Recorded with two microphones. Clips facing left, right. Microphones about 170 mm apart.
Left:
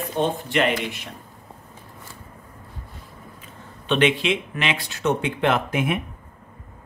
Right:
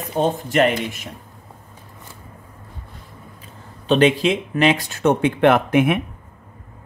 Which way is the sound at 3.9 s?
40° right (ahead or behind).